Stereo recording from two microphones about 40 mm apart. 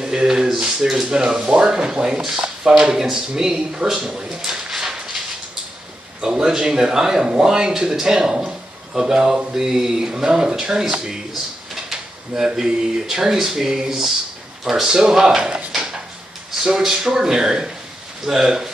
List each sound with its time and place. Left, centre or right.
0.0 s speech: centre
6.2 s speech: centre
11.7 s drawer open or close: centre
13.0 s speech: centre
15.7 s a sound: centre
16.6 s speech: centre